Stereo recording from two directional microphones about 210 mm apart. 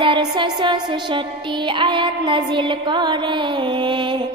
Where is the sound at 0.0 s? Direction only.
25° right (ahead or behind).